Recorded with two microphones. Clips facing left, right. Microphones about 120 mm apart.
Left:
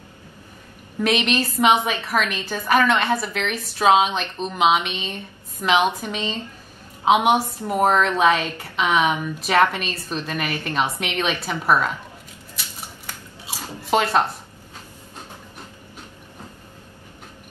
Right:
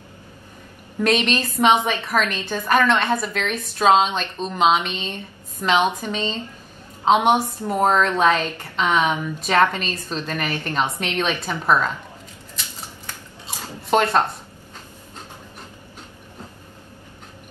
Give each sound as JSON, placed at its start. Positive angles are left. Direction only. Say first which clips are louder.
{"t": 1.0, "sound": "a woman's voice", "louder": "right 1 dB", "side_deg": 10}
{"t": 13.8, "sound": "speech", "louder": "right 1 dB", "side_deg": 5}